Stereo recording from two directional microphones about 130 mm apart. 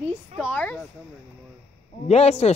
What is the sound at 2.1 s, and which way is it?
Speech, 55° left (ahead or behind).